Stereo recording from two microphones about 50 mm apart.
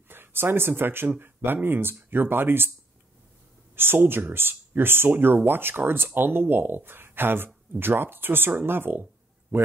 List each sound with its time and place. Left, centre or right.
0.1 s speech: right
3.7 s speech: right